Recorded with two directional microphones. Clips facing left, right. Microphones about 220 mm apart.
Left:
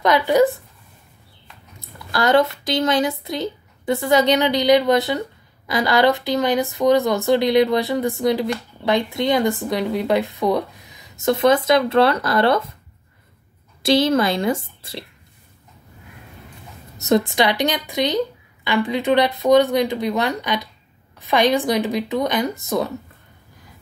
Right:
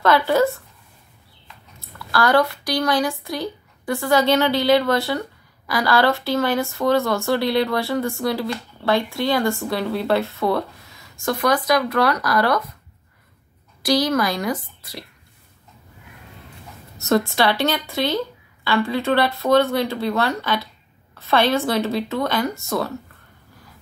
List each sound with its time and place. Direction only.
0.0 s a woman's voice: 15° left (ahead or behind)
1.8 s speech: 20° left (ahead or behind)
13.8 s speech: 25° left (ahead or behind)
17.0 s a woman's voice: 20° left (ahead or behind)